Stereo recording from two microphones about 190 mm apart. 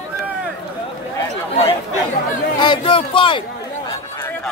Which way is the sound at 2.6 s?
25° left (ahead or behind).